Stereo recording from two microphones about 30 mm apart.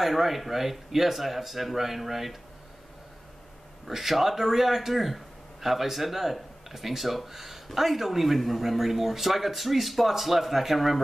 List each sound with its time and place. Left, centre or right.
0.0 s speech: centre
3.8 s speech: centre